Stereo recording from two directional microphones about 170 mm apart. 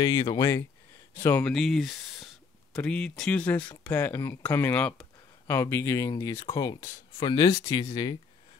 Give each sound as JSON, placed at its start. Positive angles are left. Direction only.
{"t": 0.0, "sound": "speech", "side_deg": 20}